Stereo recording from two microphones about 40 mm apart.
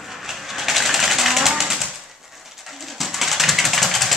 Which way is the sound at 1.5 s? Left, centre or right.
Centre.